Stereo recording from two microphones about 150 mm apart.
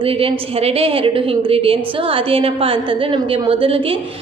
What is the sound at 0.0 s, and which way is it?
A woman's voice, 40° right (ahead or behind).